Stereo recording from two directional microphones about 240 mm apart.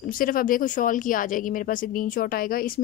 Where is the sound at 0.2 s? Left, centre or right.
Left.